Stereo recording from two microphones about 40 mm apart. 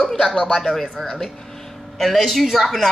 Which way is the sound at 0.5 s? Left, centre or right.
Centre.